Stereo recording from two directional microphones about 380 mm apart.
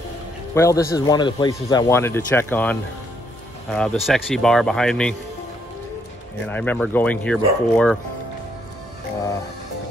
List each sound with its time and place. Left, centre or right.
0.6 s speech: centre
6.5 s speech: centre